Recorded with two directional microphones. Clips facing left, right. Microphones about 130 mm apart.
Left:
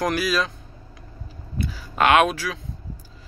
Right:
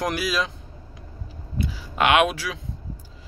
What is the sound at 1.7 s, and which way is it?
Speech, 15° right (ahead or behind).